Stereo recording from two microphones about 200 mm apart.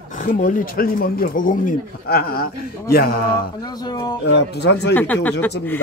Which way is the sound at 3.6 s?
20° left (ahead or behind).